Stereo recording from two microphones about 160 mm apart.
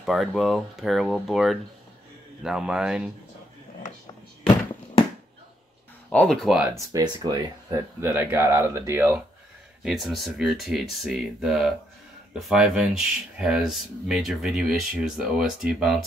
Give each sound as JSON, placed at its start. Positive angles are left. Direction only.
{"t": 0.0, "sound": "speech", "side_deg": 0}
{"t": 6.0, "sound": "speech", "side_deg": 5}
{"t": 6.9, "sound": "speech", "side_deg": -25}
{"t": 8.0, "sound": "speech", "side_deg": -15}
{"t": 9.8, "sound": "speech", "side_deg": 0}